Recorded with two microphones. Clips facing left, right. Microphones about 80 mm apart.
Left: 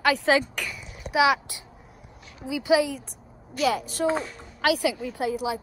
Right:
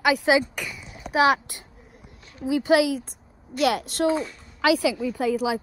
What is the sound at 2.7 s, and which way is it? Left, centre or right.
A woman's voice, right.